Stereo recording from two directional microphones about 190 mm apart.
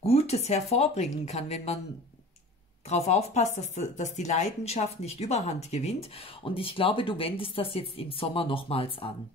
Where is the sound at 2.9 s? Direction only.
35° left (ahead or behind).